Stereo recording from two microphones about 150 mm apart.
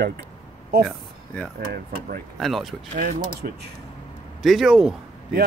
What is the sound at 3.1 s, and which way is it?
Speech, 75° right (ahead or behind).